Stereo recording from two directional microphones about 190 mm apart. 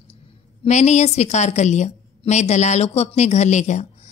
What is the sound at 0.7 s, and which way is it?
A woman's voice, 35° left (ahead or behind).